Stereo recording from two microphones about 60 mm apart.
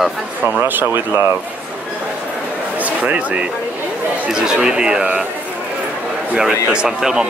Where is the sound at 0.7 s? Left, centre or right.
Right.